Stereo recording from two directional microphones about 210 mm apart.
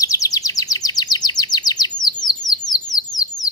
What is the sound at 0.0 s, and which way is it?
Chirp, 15° left (ahead or behind).